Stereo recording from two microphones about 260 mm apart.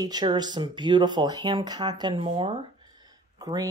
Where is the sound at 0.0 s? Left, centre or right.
Centre.